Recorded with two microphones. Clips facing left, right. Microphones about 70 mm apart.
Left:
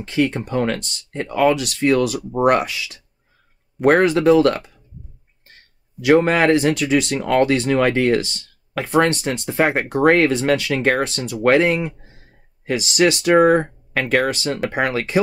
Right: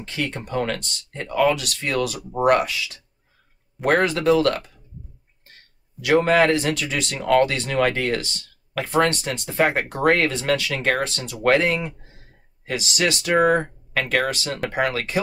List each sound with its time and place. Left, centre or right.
0.2 s speech: left
3.8 s speech: left
6.0 s speech: left